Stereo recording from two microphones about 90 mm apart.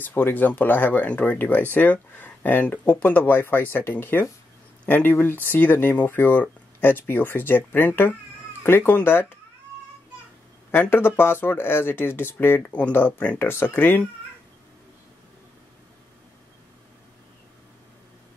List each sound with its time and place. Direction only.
0.0 s speech: 20° left (ahead or behind)
10.7 s speech: 20° left (ahead or behind)